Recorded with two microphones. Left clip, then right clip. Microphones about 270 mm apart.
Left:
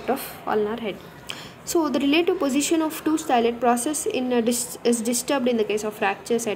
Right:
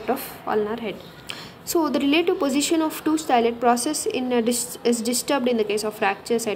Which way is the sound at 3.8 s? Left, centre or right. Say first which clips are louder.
Right 1 dB; right.